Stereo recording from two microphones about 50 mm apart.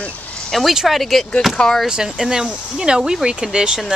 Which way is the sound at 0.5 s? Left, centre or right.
Centre.